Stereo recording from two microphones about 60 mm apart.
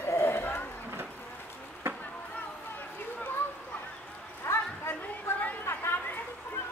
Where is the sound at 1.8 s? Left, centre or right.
Right.